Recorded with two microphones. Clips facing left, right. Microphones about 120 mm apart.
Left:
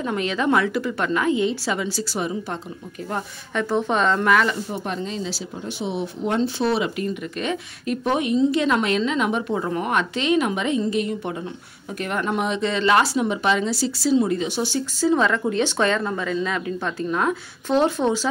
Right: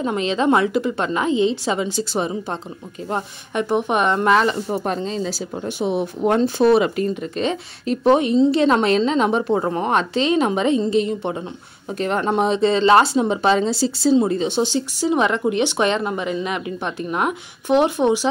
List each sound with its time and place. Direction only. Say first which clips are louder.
0.0 s speech: right 3 dB; 25° right (ahead or behind)
4.7 s speech: right 5 dB; 40° right (ahead or behind)
7.2 s a woman's voice: right 4 dB; 30° right (ahead or behind)